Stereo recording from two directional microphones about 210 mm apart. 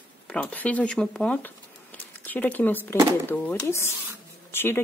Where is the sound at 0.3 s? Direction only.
5° left (ahead or behind).